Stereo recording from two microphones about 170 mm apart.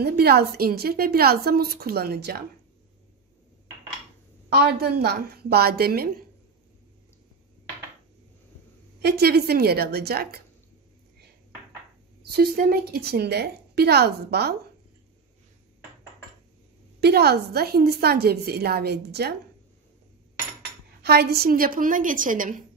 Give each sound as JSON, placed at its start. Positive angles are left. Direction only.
{"t": 0.0, "sound": "a woman's voice", "side_deg": -65}
{"t": 4.6, "sound": "a woman's voice", "side_deg": -65}
{"t": 9.0, "sound": "a woman's voice", "side_deg": -70}
{"t": 12.2, "sound": "a woman's voice", "side_deg": -65}
{"t": 17.0, "sound": "a woman's voice", "side_deg": -70}
{"t": 21.0, "sound": "a woman's voice", "side_deg": -70}